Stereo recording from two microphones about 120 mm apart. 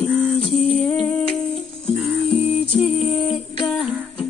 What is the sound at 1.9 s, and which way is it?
Music, 15° right (ahead or behind).